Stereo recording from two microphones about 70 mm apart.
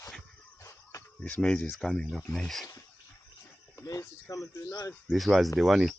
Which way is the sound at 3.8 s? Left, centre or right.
Left.